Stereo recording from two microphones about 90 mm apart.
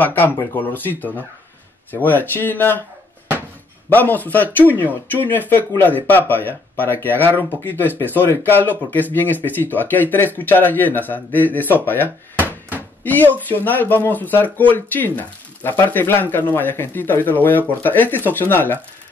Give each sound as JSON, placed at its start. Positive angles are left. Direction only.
{"t": 0.0, "sound": "speech", "side_deg": 20}
{"t": 3.9, "sound": "speech", "side_deg": 20}
{"t": 12.4, "sound": "a sound", "side_deg": -20}
{"t": 13.0, "sound": "speech", "side_deg": 20}